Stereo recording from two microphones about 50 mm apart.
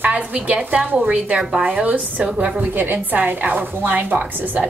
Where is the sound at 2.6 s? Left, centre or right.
Right.